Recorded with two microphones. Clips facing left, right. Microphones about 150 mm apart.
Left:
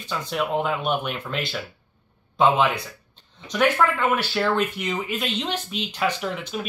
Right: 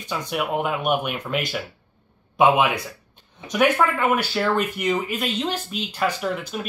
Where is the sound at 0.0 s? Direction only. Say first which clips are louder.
Even; 15° right (ahead or behind).